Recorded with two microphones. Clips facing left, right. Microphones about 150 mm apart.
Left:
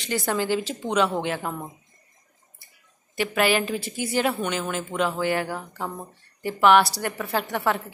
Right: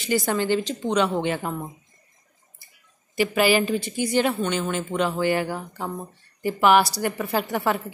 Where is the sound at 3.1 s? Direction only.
Centre (ahead or behind).